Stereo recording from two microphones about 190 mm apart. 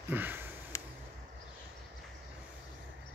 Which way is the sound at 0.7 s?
15° left (ahead or behind).